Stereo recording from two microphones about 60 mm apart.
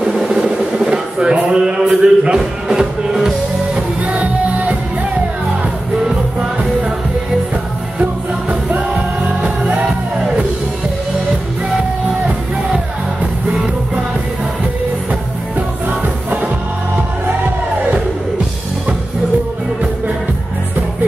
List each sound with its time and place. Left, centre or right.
0.0 s a sound: centre
1.9 s speech: right
2.3 s music: centre
3.7 s music: right
6.0 s music: centre
8.0 s music: right